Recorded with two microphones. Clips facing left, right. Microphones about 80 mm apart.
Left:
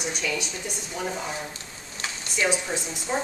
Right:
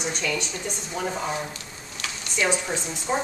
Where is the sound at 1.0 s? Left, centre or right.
Centre.